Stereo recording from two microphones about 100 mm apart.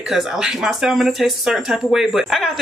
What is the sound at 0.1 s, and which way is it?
Speech, 5° right (ahead or behind).